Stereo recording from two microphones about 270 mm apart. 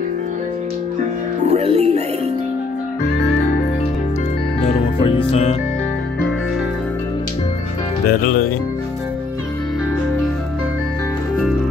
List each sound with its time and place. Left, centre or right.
1.5 s speech: right
4.6 s music: centre
8.1 s speech: left